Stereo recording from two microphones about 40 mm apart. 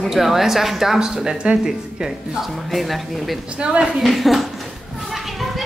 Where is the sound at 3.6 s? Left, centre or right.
Right.